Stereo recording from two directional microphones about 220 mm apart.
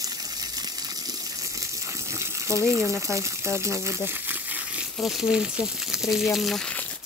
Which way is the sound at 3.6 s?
15° right (ahead or behind).